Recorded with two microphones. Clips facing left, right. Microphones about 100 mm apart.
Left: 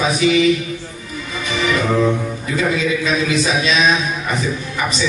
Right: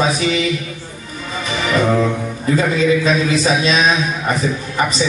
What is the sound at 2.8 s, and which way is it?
A man's voice, 35° right (ahead or behind).